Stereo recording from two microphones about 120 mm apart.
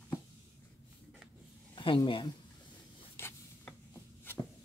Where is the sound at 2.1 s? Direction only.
45° left (ahead or behind).